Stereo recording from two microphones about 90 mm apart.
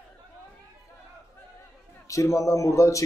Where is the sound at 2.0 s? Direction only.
35° left (ahead or behind).